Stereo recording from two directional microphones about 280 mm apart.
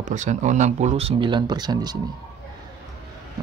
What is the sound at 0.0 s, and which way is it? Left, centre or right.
Speech, right.